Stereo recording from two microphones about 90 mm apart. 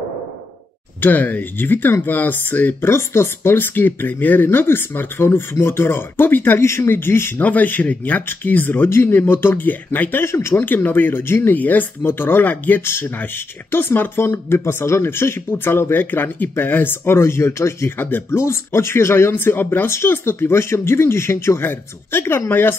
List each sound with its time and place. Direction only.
1.0 s speech: 20° left (ahead or behind)